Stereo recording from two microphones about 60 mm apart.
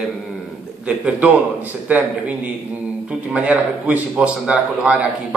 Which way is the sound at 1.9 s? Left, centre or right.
Right.